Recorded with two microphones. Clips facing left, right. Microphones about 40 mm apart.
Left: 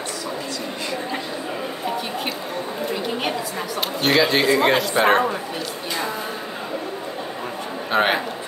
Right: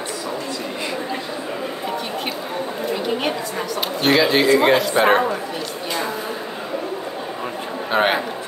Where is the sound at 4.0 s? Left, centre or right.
Centre.